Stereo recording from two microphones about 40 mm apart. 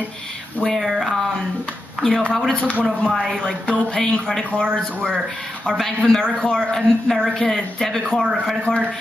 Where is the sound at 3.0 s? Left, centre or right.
Centre.